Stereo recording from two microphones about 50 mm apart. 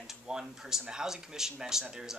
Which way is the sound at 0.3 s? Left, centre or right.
Centre.